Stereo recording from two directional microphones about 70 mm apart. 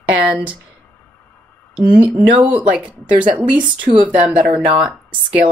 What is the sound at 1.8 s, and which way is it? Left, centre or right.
A woman's voice, right.